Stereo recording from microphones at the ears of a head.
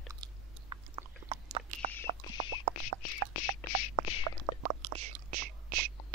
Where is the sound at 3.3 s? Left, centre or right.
Left.